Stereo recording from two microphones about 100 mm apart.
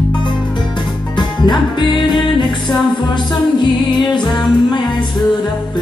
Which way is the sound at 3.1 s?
50° left (ahead or behind).